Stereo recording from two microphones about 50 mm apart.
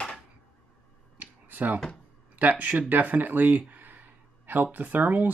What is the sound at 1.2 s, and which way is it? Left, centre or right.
Finger snapping, right.